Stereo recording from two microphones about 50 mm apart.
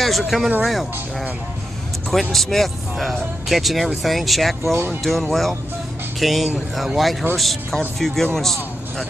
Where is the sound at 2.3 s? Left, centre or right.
Centre.